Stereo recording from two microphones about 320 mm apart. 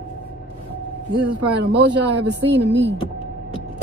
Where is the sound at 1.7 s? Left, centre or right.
Right.